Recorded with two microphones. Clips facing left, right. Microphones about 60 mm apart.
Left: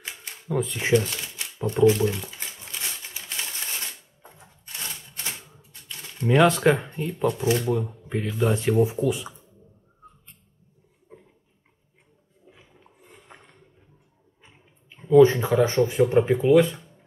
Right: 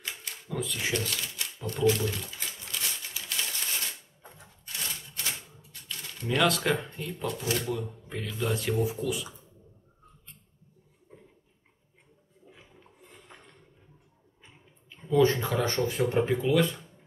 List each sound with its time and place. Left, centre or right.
0.0 s typewriter: left
1.8 s a sound: left
5.1 s shuffling cards: left
8.1 s speech: left
13.3 s a sound: left
15.0 s speech: centre